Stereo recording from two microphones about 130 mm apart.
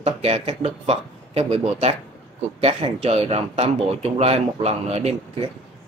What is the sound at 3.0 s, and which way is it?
Speech, 50° right (ahead or behind).